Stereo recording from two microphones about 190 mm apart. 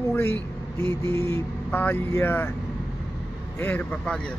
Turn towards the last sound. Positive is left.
turn(degrees=5)  # may be behind; listen again after turning